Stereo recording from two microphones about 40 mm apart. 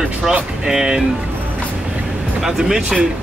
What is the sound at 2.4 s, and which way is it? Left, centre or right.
Speech, centre.